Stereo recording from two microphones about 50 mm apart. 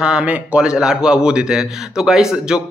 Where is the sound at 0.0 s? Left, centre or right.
Right.